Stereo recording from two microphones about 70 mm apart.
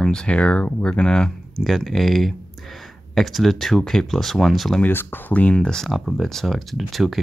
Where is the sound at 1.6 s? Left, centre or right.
Centre.